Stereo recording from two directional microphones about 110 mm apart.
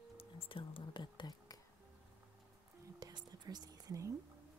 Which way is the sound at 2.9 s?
40° right (ahead or behind).